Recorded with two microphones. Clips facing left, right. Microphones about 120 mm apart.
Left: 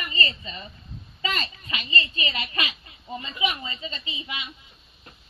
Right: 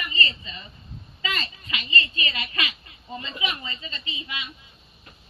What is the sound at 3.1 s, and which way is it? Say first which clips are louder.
A woman's voice: left 3 dB; 20° left (ahead or behind).